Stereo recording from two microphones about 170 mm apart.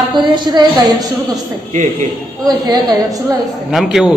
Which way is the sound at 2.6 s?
25° right (ahead or behind).